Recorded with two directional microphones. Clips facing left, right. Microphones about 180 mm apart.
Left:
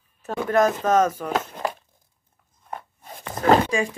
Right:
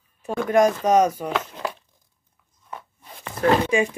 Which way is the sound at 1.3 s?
45° left (ahead or behind).